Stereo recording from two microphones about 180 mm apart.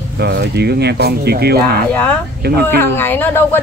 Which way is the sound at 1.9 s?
10° left (ahead or behind).